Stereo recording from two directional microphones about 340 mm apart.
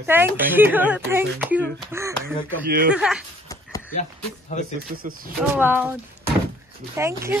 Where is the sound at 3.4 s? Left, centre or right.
Centre.